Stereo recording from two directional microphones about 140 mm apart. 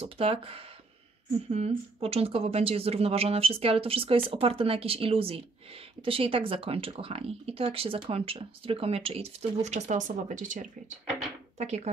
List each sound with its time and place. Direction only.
0.0 s speech: 45° right (ahead or behind); by 10.7 s 65° right (ahead or behind)
11.5 s speech: 55° right (ahead or behind)